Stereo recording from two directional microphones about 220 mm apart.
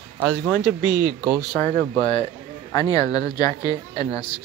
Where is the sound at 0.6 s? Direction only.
20° left (ahead or behind).